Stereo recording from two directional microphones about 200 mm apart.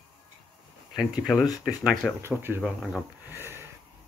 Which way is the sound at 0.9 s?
Centre (ahead or behind).